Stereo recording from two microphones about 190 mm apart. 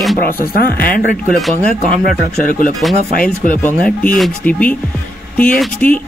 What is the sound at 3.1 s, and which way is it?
Speech, 45° left (ahead or behind).